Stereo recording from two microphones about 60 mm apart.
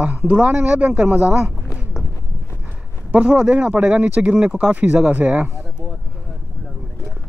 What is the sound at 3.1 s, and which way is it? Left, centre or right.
Speech, right.